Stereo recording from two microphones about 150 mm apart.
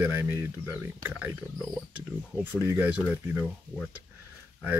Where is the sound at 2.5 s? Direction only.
15° right (ahead or behind).